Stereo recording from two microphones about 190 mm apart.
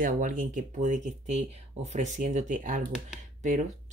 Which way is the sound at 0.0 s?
45° right (ahead or behind).